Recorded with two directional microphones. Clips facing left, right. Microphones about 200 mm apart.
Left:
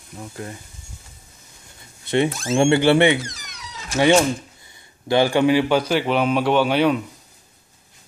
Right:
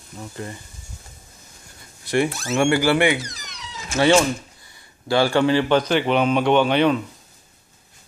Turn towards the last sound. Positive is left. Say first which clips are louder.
# right 1 dB
turn(degrees=5)  # may be behind; listen again after turning